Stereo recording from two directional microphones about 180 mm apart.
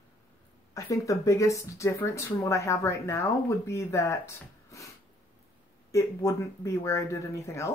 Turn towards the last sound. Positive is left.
turn(degrees=15)  # may be behind; listen again after turning